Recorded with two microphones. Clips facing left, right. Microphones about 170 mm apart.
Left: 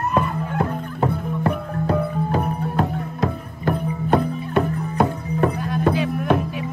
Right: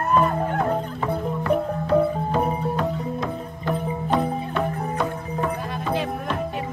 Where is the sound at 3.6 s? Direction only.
50° left (ahead or behind).